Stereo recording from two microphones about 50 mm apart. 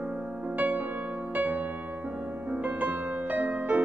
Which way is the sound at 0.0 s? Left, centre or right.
Right.